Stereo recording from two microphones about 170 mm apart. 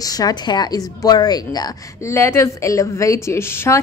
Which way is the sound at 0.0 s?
20° left (ahead or behind).